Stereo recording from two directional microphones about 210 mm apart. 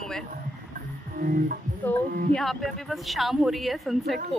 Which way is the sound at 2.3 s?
Centre (ahead or behind).